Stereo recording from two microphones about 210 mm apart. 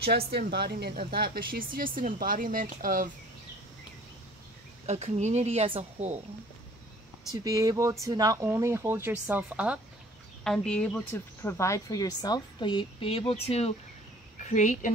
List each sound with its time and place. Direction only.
0.0 s speech: 50° right (ahead or behind)
4.8 s speech: 30° right (ahead or behind)
7.4 s a woman's voice: 15° right (ahead or behind); by 14.9 s 35° left (ahead or behind)